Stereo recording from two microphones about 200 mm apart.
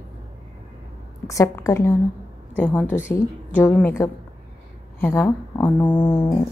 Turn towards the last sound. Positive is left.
turn(degrees=15)  # may be behind; listen again after turning